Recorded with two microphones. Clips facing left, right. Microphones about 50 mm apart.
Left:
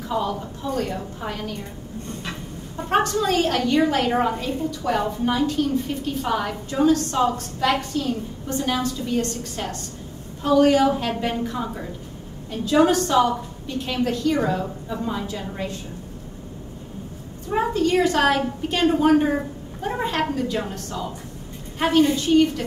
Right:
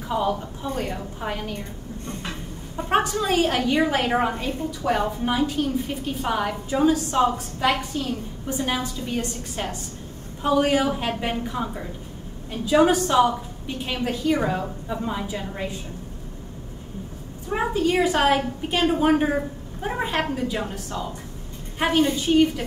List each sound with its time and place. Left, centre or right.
0.1 s a woman's voice: centre
2.9 s a woman's voice: centre
17.5 s a woman's voice: centre